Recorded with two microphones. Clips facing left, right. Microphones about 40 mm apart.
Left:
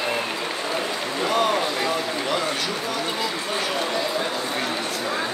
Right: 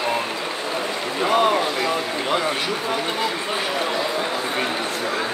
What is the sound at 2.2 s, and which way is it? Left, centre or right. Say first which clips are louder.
Run: right 2 dB; centre.